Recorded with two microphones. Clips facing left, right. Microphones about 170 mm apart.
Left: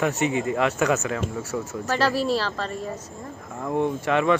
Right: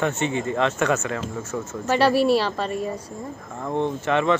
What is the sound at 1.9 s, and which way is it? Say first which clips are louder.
A woman's voice: right 5 dB; 10° right (ahead or behind).